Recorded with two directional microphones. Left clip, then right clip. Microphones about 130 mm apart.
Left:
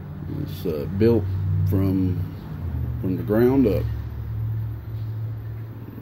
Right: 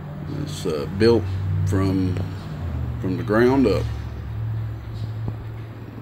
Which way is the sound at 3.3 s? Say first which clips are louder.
Right 2 dB; 40° left (ahead or behind).